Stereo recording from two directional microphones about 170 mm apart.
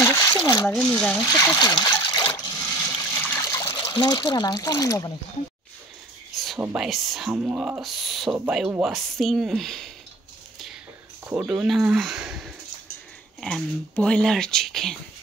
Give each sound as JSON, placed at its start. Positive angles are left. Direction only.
{"t": 0.0, "sound": "a sound", "side_deg": 20}
{"t": 0.8, "sound": "speech", "side_deg": 5}
{"t": 1.2, "sound": "speech", "side_deg": 20}
{"t": 3.0, "sound": "water", "side_deg": 10}
{"t": 6.3, "sound": "a sound", "side_deg": 0}
{"t": 6.6, "sound": "speech", "side_deg": -5}
{"t": 11.2, "sound": "speech", "side_deg": -5}